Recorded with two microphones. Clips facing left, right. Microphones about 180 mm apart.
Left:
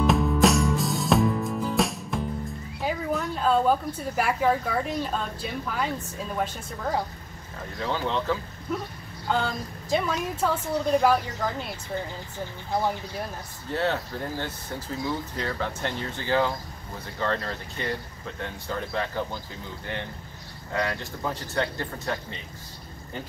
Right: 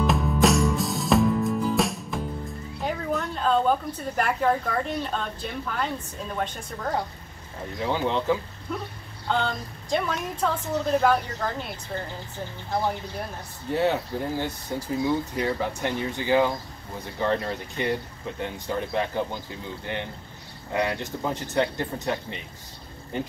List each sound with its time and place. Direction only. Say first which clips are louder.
0.0 s music: left 1 dB; centre (ahead or behind)
2.8 s a sound: even; centre (ahead or behind)
4.2 s a woman's voice: even; 5° left (ahead or behind)
7.8 s speech: right 2 dB; 15° right (ahead or behind)
9.3 s a woman's voice: even; 5° left (ahead or behind)
13.7 s speech: right 3 dB; 15° right (ahead or behind)